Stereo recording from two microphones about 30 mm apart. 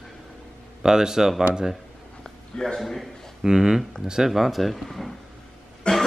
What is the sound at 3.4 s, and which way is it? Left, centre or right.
Speech, centre.